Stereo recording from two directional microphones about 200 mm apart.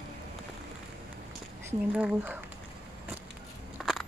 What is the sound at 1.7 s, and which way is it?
Speech, 10° right (ahead or behind).